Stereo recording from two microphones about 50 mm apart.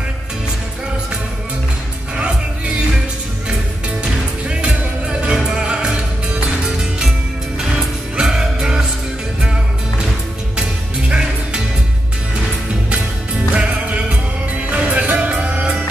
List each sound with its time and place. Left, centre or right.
4.0 s music: centre
8.2 s music: centre
11.1 s music: centre
13.6 s music: right